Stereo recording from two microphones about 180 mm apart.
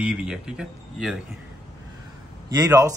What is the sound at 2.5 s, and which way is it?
Speech, 20° right (ahead or behind).